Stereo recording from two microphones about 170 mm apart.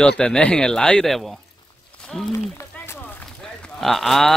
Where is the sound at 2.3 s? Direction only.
15° left (ahead or behind).